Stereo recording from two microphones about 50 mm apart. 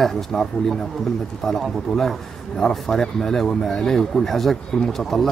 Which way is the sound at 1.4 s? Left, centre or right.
Centre.